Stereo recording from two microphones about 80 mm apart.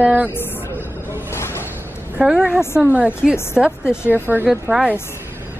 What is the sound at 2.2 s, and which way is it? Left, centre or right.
Speech, centre.